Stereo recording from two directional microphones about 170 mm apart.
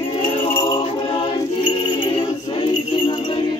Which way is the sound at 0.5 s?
20° left (ahead or behind).